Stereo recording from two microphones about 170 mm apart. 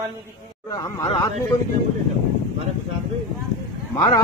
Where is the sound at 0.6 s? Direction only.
20° left (ahead or behind).